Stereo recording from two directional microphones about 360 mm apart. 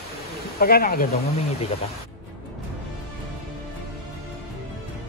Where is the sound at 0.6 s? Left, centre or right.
Left.